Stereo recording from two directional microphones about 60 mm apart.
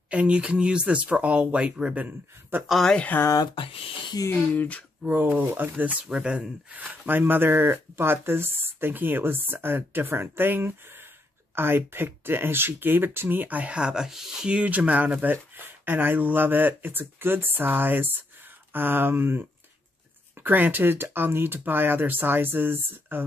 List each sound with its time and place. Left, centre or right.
0.1 s speech: centre
2.0 s speech: right
2.6 s speech: centre
3.1 s speech: left
4.6 s speech: left
5.0 s speech: right
6.0 s speech: centre
14.6 s speech: right
20.4 s speech: right